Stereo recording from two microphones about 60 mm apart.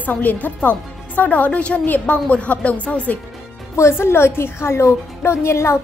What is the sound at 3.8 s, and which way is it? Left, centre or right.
A woman's voice, left.